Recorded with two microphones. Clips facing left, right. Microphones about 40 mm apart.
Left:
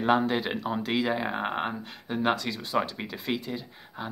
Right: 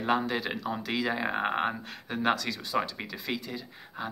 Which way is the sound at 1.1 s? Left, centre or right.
Centre.